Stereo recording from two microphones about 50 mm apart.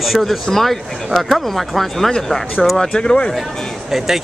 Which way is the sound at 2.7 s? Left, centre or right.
Centre.